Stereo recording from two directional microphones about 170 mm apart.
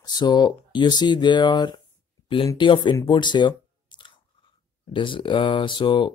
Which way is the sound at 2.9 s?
25° left (ahead or behind).